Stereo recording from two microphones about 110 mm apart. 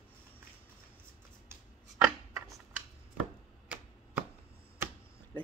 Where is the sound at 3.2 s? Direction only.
10° right (ahead or behind).